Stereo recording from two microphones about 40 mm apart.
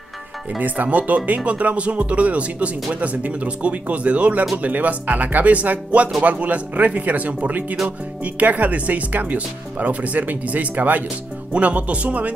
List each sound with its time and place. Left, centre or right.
0.6 s speech: right